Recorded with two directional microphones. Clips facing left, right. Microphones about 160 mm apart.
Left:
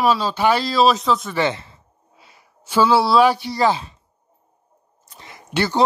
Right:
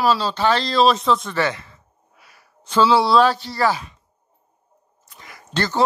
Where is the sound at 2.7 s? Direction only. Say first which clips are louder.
Even; 10° left (ahead or behind); by 4.0 s 25° left (ahead or behind).